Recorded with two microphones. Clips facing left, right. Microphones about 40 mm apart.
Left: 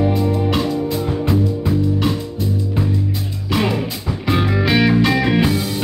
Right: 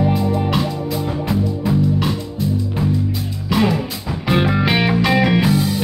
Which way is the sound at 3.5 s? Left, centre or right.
Centre.